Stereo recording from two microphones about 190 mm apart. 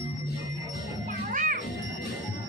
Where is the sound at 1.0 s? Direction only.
45° right (ahead or behind).